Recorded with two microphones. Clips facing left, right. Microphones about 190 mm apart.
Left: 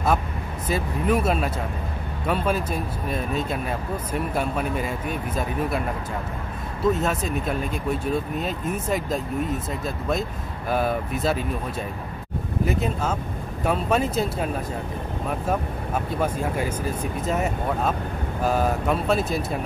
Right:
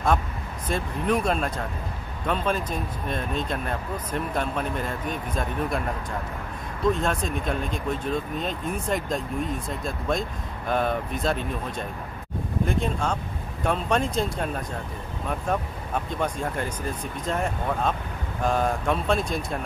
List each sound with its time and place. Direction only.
0.7 s speech: 5° left (ahead or behind)
6.8 s speech: 5° left (ahead or behind)
12.6 s speech: 5° left (ahead or behind)